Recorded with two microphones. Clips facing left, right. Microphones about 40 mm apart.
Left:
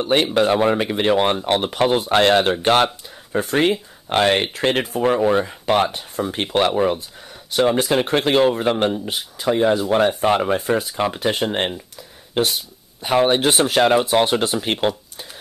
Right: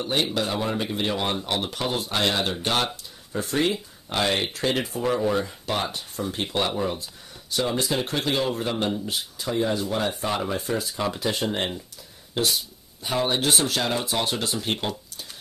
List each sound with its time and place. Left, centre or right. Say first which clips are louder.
0.0 s speech: left 8 dB; left
5.9 s speech: left 6 dB; left
6.3 s speech: left 8 dB; left
6.7 s speech: left 8 dB; left